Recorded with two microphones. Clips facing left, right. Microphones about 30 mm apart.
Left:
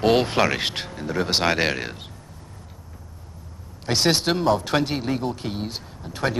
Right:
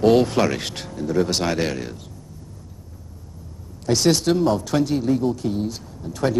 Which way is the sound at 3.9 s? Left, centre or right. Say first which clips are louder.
Right 3 dB; left.